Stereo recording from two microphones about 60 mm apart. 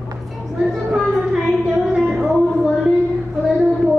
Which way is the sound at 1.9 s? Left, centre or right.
Centre.